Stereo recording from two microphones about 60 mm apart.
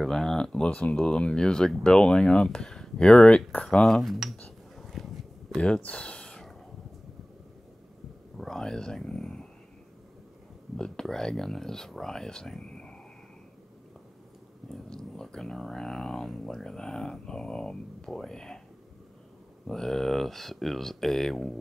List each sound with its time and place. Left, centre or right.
0.0 s speech: centre
4.7 s a sound: centre
5.6 s speech: centre
8.4 s a sound: centre
10.8 s speech: centre
14.7 s speech: centre
19.7 s speech: centre